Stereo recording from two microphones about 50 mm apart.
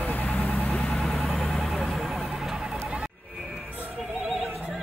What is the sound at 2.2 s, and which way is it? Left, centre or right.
Vehicle, centre.